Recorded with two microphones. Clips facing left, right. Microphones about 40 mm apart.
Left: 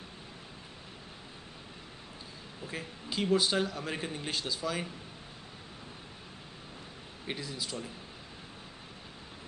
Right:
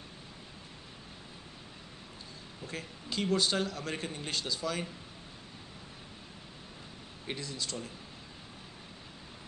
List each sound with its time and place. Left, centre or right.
2.6 s a man's voice: centre
7.2 s a man's voice: centre